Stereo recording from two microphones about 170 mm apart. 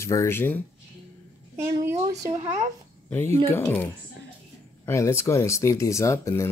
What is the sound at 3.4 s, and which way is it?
Speech, 15° left (ahead or behind).